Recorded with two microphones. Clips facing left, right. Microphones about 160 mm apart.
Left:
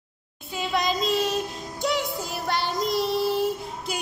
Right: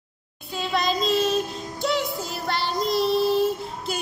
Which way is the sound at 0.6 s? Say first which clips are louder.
Right 1 dB; 15° left (ahead or behind).